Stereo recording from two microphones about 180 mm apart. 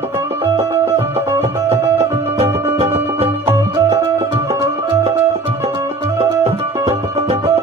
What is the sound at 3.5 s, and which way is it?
Music, 15° right (ahead or behind).